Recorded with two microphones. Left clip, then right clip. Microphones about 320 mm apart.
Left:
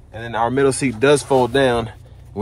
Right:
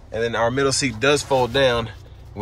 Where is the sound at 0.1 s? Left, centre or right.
Centre.